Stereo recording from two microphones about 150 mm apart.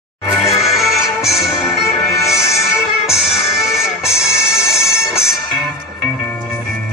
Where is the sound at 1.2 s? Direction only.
Centre (ahead or behind).